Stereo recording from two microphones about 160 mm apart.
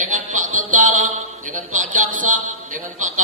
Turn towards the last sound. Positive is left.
turn(degrees=-55)  # may be behind; listen again after turning